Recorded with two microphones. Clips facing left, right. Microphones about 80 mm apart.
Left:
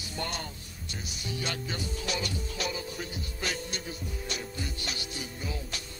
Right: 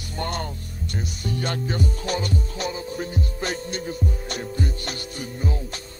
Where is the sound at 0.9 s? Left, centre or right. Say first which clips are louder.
Right 8 dB; right.